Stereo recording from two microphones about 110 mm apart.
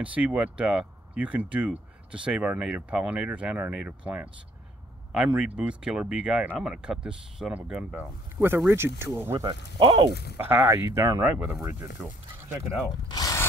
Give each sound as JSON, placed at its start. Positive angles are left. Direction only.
{"t": 0.0, "sound": "speech", "side_deg": -10}
{"t": 9.4, "sound": "speech", "side_deg": -50}
{"t": 10.4, "sound": "speech", "side_deg": -20}
{"t": 13.1, "sound": "a sound", "side_deg": 30}